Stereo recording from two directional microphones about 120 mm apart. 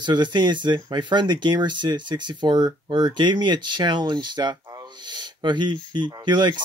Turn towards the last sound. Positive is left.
turn(degrees=-40)  # may be behind; listen again after turning